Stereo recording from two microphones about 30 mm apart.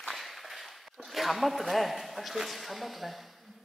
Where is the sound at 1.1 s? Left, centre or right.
Centre.